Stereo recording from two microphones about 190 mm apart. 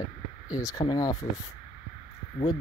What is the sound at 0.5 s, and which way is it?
Speech, 20° left (ahead or behind).